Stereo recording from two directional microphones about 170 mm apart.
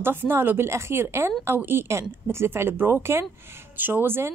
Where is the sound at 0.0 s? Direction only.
15° right (ahead or behind).